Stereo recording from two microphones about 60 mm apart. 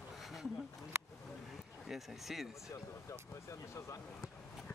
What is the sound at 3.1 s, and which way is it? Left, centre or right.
Speech, left.